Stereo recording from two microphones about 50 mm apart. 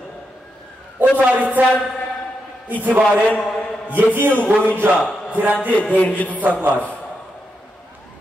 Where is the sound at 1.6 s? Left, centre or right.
Right.